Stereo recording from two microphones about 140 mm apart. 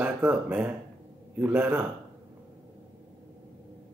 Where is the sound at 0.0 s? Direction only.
10° right (ahead or behind).